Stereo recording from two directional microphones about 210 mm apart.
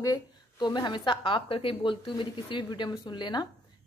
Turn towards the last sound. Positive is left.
turn(degrees=20)  # may be behind; listen again after turning